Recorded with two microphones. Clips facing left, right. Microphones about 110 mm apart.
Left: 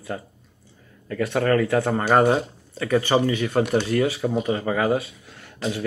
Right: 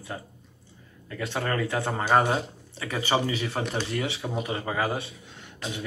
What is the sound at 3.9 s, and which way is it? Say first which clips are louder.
Speech: left 9 dB; 50° left (ahead or behind).